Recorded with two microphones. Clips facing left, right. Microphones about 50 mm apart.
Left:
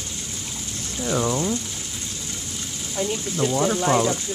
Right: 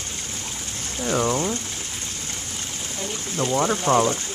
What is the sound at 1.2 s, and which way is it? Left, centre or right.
Speech, right.